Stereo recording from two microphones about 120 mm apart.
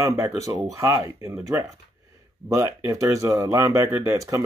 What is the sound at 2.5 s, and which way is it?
Speech, 25° right (ahead or behind).